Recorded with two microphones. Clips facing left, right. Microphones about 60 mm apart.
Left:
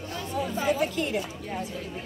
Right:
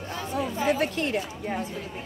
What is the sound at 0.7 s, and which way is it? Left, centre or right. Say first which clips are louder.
Speech: right 1 dB; right.